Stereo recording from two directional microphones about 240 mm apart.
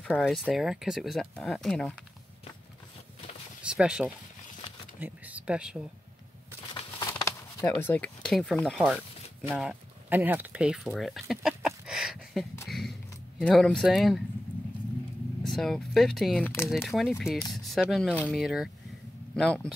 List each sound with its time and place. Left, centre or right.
0.1 s speech: centre
3.7 s speech: centre
6.7 s a sound: centre
9.5 s speech: centre
12.6 s a sound: centre
13.4 s speech: centre
15.4 s speech: centre